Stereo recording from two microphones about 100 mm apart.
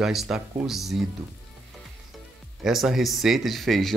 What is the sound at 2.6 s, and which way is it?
Speech, 5° right (ahead or behind).